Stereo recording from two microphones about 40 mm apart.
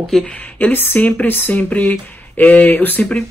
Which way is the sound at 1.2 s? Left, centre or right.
Left.